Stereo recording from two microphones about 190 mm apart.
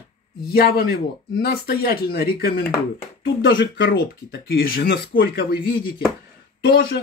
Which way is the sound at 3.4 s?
70° left (ahead or behind).